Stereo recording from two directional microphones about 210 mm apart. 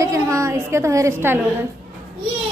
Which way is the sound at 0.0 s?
15° right (ahead or behind).